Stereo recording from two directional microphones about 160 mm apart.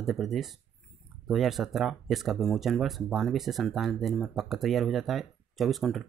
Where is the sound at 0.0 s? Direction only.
Centre (ahead or behind).